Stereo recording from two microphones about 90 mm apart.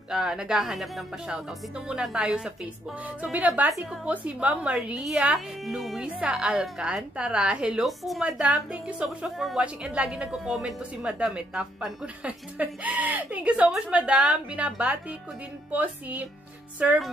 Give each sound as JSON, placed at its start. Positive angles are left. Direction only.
{"t": 0.1, "sound": "a woman's voice", "side_deg": -5}
{"t": 8.4, "sound": "a woman's voice", "side_deg": -15}
{"t": 9.0, "sound": "a woman's voice", "side_deg": 0}